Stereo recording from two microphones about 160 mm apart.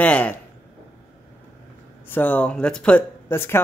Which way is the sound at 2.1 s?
10° left (ahead or behind).